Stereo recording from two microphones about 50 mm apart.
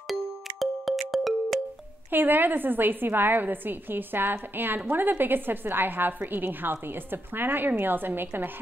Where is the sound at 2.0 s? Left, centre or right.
Right.